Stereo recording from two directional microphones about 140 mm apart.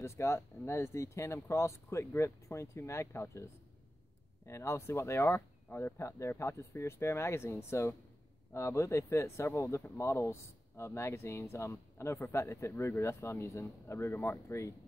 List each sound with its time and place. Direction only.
0.0 s speech: 20° left (ahead or behind)
4.5 s speech: 20° left (ahead or behind)